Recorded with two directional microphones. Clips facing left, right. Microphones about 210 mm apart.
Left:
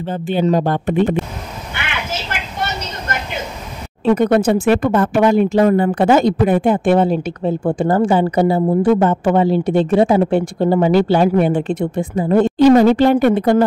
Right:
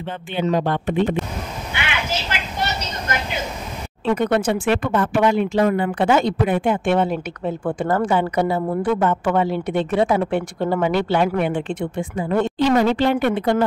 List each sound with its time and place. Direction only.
0.0 s speech: 40° left (ahead or behind)
4.0 s a woman's voice: 40° left (ahead or behind)